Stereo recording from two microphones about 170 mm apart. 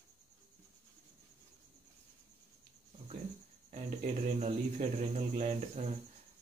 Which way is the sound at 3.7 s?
45° right (ahead or behind).